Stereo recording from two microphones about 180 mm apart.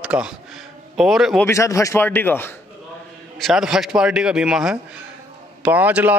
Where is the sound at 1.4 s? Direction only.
15° left (ahead or behind).